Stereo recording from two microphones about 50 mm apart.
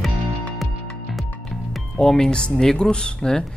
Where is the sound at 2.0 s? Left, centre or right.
Centre.